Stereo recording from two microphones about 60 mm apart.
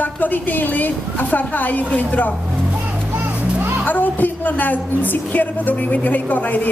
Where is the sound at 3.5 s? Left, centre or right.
Right.